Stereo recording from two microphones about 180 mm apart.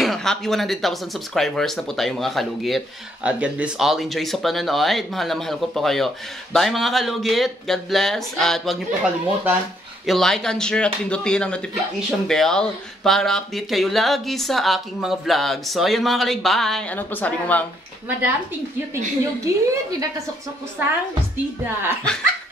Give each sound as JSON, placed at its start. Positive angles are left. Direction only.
{"t": 0.0, "sound": "speech", "side_deg": 0}
{"t": 19.4, "sound": "a woman's voice", "side_deg": -15}
{"t": 22.1, "sound": "speech", "side_deg": 5}